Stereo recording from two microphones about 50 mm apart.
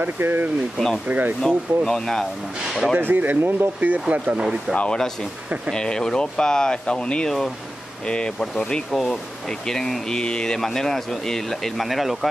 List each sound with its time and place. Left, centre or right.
0.2 s speech: right
0.7 s speech: centre
1.0 s speech: right
1.4 s speech: centre
2.7 s speech: centre
3.0 s speech: right
4.1 s speech: centre
5.7 s speech: centre